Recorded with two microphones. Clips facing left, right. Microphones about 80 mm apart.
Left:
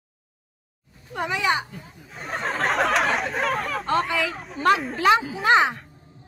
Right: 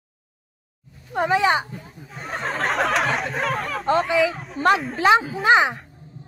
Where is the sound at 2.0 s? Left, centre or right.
Centre.